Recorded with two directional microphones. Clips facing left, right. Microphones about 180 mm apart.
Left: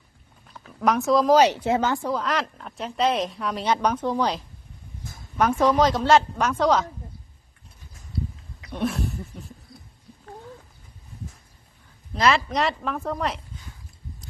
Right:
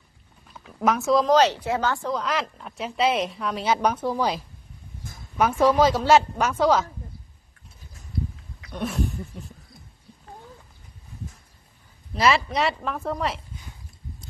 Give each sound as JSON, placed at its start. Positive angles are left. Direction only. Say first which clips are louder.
{"t": 0.8, "sound": "a woman's voice", "louder": "left 1 dB", "side_deg": 0}
{"t": 1.6, "sound": "speech", "louder": "left 2 dB", "side_deg": 20}
{"t": 2.1, "sound": "a woman's voice", "louder": "left 1 dB", "side_deg": 0}
{"t": 5.4, "sound": "a woman's voice", "louder": "right 1 dB", "side_deg": -5}
{"t": 8.7, "sound": "a sound", "louder": "left 1 dB", "side_deg": 0}
{"t": 12.1, "sound": "a woman's voice", "louder": "even", "side_deg": 0}